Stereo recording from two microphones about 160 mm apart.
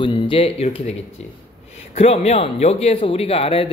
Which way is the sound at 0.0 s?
30° left (ahead or behind).